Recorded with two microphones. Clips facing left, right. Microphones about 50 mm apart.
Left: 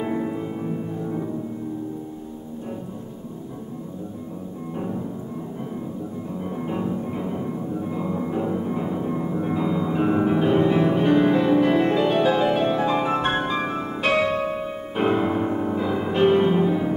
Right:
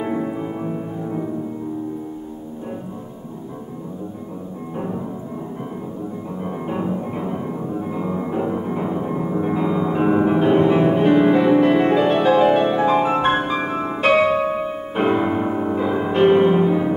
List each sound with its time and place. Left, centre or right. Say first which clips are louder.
0.0 s music: right 2 dB; centre
4.7 s music: right 2 dB; right
6.4 s music: right 3 dB; centre
14.0 s piano: right 5 dB; centre